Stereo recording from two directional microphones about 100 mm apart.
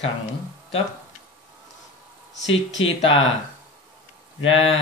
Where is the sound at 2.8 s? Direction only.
70° left (ahead or behind).